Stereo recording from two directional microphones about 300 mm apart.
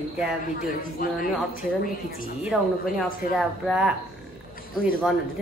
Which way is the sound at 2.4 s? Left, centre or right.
Centre.